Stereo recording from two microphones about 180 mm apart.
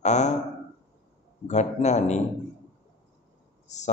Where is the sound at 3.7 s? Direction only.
40° left (ahead or behind).